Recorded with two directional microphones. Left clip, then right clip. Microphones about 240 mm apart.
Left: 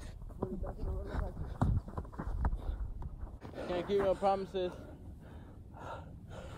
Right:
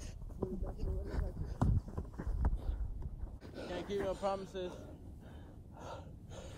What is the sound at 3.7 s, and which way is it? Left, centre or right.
Roaring cats, left.